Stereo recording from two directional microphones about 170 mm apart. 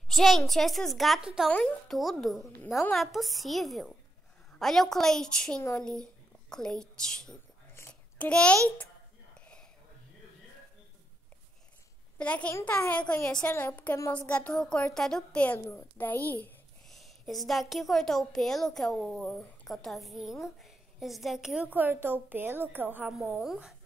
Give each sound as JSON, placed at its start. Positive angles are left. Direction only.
{"t": 0.1, "sound": "a child's voice", "side_deg": 0}
{"t": 7.7, "sound": "a sound", "side_deg": 10}
{"t": 12.2, "sound": "a child's voice", "side_deg": 10}